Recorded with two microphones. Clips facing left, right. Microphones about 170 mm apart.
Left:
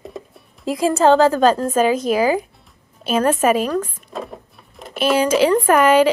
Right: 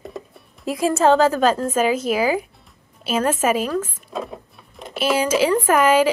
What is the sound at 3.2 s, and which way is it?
Speech, 55° left (ahead or behind).